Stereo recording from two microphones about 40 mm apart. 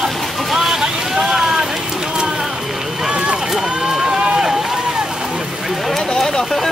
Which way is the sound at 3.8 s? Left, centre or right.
Centre.